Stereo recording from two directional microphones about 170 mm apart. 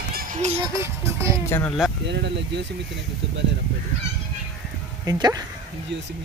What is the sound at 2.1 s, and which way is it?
Speech, 80° right.